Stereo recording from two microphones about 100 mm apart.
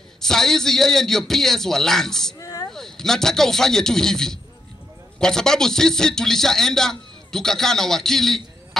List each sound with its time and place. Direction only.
0.2 s a man's voice: 5° left (ahead or behind)
2.3 s a sound: 35° left (ahead or behind)
2.7 s a man's voice: 5° left (ahead or behind)